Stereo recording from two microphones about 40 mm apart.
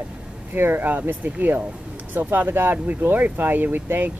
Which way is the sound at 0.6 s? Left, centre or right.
Right.